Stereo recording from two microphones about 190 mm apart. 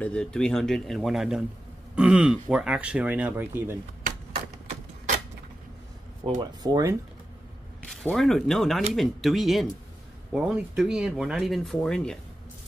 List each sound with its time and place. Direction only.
0.0 s speech: 5° left (ahead or behind)
2.0 s a sound: 5° right (ahead or behind)
2.5 s speech: 5° right (ahead or behind)
6.2 s speech: 20° right (ahead or behind)
7.9 s speech: 5° left (ahead or behind)